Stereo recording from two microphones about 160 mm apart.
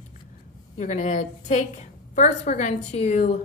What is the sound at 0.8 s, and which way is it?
A woman's voice, 50° left (ahead or behind).